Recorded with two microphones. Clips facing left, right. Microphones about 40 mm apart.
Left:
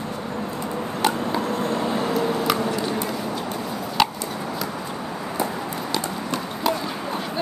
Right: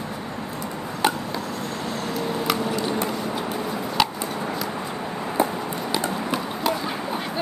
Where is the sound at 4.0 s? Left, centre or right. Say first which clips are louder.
Left 2 dB; centre.